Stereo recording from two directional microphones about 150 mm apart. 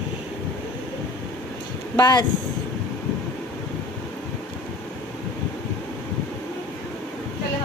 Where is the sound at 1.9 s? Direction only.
25° left (ahead or behind).